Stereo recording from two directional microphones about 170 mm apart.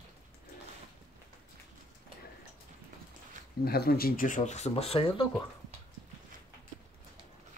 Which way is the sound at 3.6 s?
65° left (ahead or behind).